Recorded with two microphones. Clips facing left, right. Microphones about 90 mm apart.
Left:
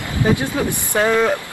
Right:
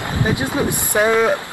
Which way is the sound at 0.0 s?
20° right (ahead or behind).